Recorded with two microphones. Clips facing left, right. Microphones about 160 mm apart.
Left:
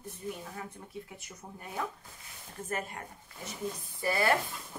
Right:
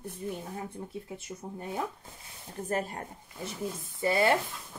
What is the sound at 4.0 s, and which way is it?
Stir, 20° right (ahead or behind).